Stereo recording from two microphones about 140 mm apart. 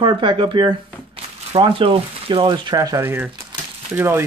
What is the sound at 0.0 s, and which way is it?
Speech, 35° right (ahead or behind).